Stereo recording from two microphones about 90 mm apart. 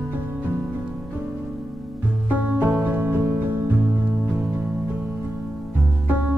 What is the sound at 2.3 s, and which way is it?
Music, 20° right (ahead or behind).